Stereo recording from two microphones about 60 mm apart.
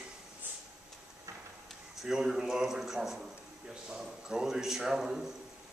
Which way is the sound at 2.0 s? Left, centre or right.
Centre.